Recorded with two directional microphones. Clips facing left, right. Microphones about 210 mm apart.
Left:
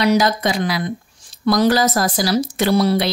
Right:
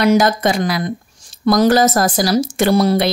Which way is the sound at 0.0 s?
50° right (ahead or behind).